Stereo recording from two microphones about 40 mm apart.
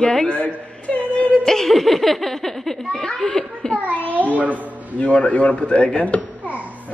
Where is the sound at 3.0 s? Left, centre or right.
Centre.